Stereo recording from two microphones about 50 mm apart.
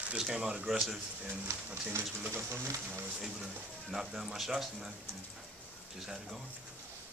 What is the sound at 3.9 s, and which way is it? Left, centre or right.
Speech, centre.